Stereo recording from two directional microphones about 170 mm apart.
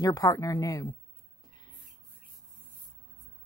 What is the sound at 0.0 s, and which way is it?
Speech, 20° left (ahead or behind).